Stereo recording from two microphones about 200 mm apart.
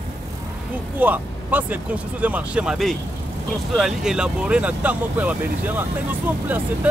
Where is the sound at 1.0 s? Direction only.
10° right (ahead or behind).